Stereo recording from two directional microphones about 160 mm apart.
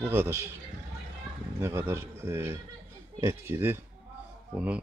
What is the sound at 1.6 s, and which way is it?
Speech, 15° right (ahead or behind).